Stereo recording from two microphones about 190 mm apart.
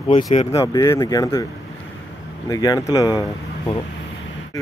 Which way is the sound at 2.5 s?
20° left (ahead or behind).